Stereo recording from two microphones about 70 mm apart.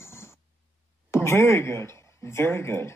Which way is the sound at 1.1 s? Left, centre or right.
Left.